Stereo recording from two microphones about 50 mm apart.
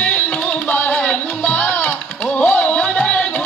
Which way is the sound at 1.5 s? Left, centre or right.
Left.